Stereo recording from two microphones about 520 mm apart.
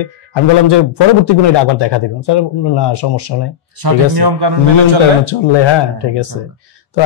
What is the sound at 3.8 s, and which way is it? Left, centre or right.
A man's voice, right.